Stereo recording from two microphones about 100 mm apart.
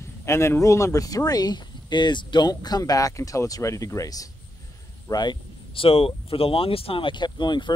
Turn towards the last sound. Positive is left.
turn(degrees=50)  # may be behind; listen again after turning